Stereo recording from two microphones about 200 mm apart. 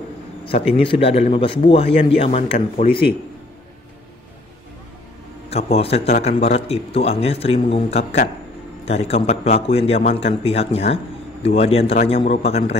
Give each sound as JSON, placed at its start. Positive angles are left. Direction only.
{"t": 0.5, "sound": "a man's voice", "side_deg": 30}
{"t": 5.5, "sound": "a man's voice", "side_deg": 30}